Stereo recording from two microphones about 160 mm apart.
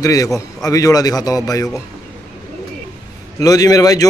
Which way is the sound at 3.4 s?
20° left (ahead or behind).